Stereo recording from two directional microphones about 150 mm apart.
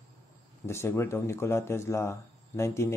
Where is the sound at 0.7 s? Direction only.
15° left (ahead or behind).